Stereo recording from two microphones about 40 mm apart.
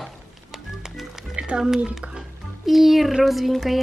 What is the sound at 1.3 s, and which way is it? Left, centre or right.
Music, right.